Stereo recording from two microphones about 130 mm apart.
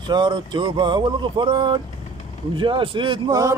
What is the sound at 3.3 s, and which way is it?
Speech, 25° right (ahead or behind).